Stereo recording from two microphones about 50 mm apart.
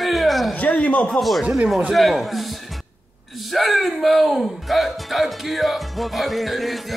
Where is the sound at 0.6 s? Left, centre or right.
Left.